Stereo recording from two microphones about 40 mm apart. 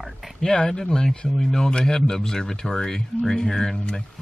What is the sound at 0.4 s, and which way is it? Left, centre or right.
Speech, centre.